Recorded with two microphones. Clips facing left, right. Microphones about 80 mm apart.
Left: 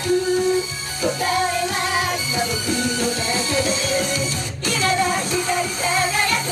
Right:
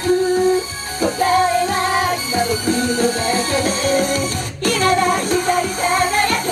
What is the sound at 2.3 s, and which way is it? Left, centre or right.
Music, right.